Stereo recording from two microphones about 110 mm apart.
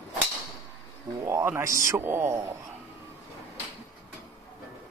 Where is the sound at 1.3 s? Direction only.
25° right (ahead or behind).